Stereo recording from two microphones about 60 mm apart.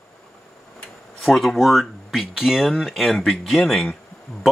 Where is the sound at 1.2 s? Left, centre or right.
Centre.